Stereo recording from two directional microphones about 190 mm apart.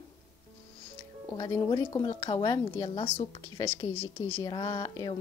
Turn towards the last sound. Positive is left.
turn(degrees=20)  # may be behind; listen again after turning